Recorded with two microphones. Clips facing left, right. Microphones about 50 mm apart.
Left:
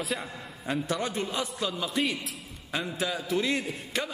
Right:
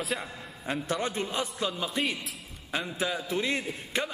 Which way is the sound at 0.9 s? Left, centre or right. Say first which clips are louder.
Even; right.